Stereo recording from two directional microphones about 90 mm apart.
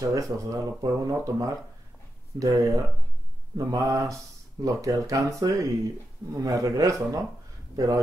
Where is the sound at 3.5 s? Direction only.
40° right (ahead or behind).